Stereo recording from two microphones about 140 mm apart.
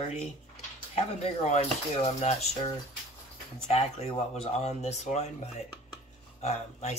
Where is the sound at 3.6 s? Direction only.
50° left (ahead or behind).